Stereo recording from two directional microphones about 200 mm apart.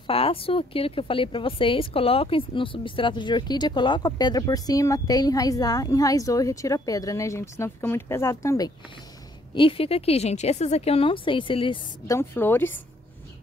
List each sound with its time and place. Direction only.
0.0 s speech: 25° left (ahead or behind)
12.2 s speech: 10° left (ahead or behind)